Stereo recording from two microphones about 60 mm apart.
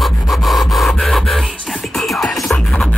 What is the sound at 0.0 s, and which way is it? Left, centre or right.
Rub, centre.